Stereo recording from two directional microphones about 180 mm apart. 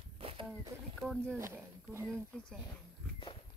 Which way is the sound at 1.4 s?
10° right (ahead or behind).